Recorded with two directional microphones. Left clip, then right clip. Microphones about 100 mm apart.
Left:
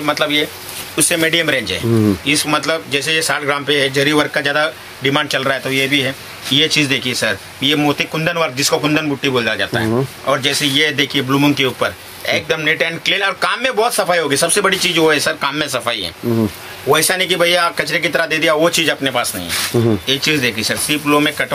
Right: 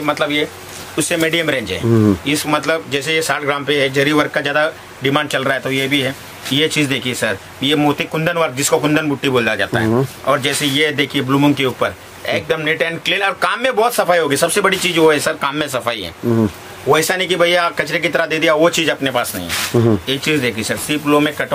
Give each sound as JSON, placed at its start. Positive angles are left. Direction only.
{"t": 0.0, "sound": "speech", "side_deg": -10}